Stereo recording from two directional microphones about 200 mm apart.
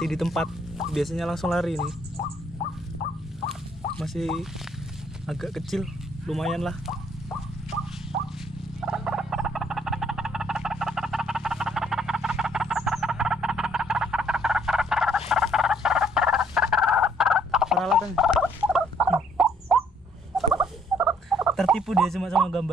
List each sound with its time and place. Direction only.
0.0 s speech: centre (ahead or behind)
4.0 s speech: centre (ahead or behind)
5.2 s a sound: centre (ahead or behind)
8.1 s a sound: 55° right (ahead or behind)
8.8 s frog: 5° right (ahead or behind)
20.3 s turkey: centre (ahead or behind)